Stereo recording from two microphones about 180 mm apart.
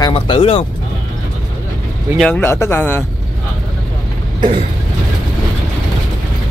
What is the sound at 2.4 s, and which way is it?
Speech, 15° left (ahead or behind).